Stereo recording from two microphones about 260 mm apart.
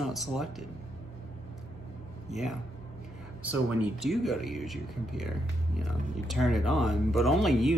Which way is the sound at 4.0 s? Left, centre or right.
Centre.